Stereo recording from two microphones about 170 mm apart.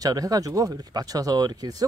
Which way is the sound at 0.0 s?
20° right (ahead or behind).